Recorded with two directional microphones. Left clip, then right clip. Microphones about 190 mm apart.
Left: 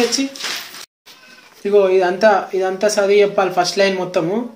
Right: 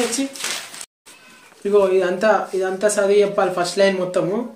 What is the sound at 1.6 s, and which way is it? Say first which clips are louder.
Speech: left 3 dB; 5° left (ahead or behind).